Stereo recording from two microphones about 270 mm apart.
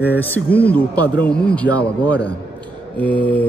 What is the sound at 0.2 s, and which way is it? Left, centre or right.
A man's voice, centre.